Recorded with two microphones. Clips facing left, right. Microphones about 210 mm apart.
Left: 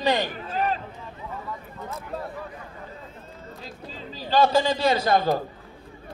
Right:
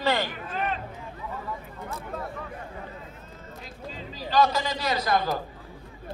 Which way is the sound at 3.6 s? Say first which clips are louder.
Even; 30° left (ahead or behind).